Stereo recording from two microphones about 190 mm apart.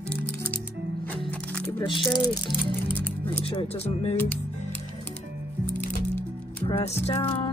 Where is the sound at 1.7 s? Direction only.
25° left (ahead or behind).